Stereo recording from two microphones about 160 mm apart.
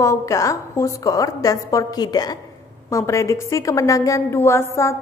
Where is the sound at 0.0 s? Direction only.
20° left (ahead or behind).